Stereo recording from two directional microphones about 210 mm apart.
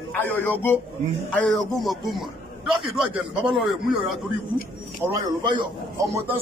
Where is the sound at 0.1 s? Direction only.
10° left (ahead or behind).